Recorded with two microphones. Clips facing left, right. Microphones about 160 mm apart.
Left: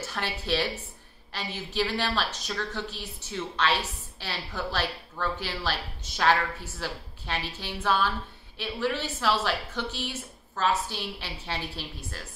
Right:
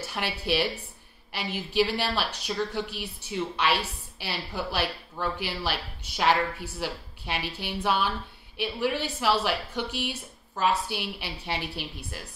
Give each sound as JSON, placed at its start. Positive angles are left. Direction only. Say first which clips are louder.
{"t": 0.0, "sound": "a woman's voice", "louder": "right 1 dB", "side_deg": -15}